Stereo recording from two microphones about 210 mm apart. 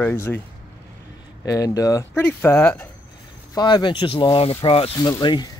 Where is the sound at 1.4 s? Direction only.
15° left (ahead or behind).